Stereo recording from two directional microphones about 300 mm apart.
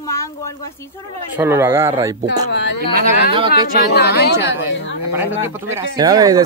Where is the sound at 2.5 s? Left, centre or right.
Left.